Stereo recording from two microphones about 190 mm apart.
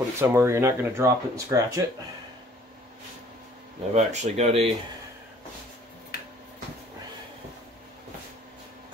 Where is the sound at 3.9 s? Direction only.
35° right (ahead or behind).